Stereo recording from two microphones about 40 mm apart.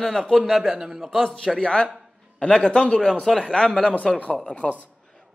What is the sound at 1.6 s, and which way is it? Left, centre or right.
Speech, left.